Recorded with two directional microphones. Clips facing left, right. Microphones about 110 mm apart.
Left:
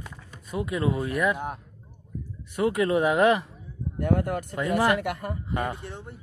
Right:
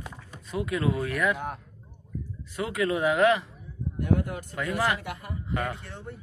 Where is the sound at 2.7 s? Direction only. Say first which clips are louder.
Even; 30° left (ahead or behind).